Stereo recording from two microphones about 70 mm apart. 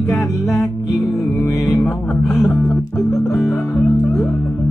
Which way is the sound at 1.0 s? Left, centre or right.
Centre.